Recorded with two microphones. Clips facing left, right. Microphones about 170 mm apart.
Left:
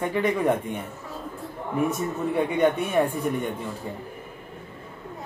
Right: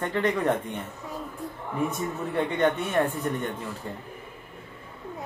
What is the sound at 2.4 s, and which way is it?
Speech, 10° left (ahead or behind).